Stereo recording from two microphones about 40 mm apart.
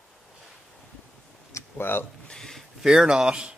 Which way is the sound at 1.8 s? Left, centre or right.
Left.